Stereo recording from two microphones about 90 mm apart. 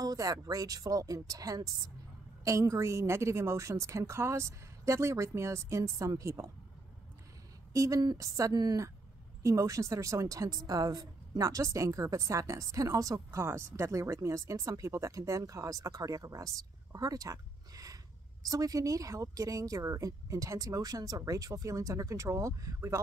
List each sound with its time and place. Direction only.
0.0 s a woman's voice: 45° right (ahead or behind)
7.7 s a woman's voice: 40° right (ahead or behind)